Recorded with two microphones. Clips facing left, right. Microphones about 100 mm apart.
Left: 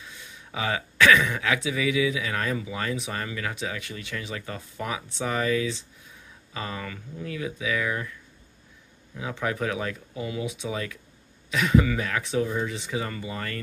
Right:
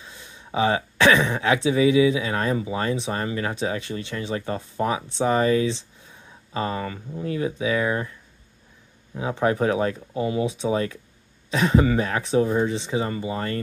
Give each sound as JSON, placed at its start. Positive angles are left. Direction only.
{"t": 0.0, "sound": "speech", "side_deg": -30}